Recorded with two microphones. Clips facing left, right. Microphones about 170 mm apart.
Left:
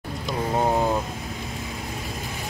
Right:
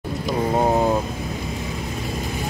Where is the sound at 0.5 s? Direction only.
20° right (ahead or behind).